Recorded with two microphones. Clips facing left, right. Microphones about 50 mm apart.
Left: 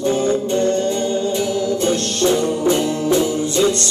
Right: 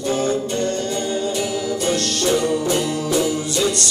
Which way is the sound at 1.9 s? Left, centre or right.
Left.